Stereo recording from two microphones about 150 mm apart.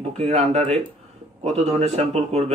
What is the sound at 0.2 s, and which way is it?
Speech, 45° right (ahead or behind).